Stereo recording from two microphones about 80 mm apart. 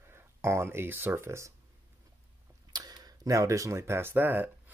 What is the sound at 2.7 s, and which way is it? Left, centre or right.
Speech, right.